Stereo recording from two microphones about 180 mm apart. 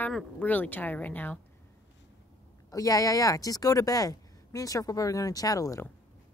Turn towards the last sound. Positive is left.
turn(degrees=15)  # may be behind; listen again after turning